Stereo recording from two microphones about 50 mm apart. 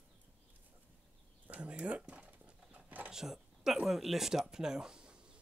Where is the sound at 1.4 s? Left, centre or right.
Right.